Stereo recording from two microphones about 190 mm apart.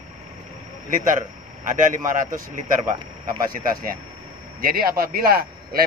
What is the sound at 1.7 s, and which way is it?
Speech, 45° right (ahead or behind).